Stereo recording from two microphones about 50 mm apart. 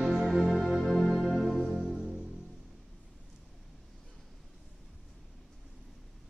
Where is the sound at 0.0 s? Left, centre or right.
Centre.